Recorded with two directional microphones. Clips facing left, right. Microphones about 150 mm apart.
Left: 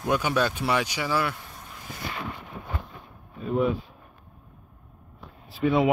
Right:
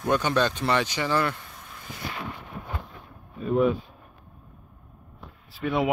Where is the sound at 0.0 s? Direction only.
10° left (ahead or behind).